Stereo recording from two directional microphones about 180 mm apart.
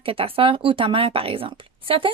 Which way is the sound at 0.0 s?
30° right (ahead or behind).